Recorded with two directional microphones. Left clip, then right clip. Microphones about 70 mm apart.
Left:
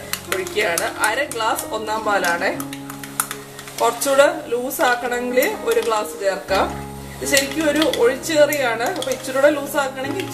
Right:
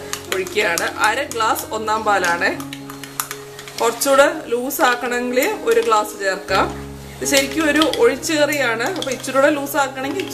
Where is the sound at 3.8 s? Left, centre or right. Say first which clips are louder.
Right 1 dB; right.